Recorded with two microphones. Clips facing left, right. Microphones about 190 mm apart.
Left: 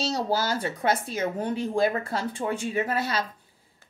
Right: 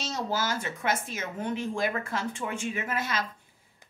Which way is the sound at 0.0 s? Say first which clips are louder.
Left 5 dB; 35° left (ahead or behind).